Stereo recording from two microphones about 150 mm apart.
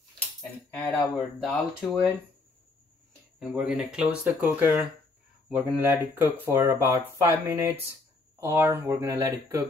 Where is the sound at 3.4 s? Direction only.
5° right (ahead or behind).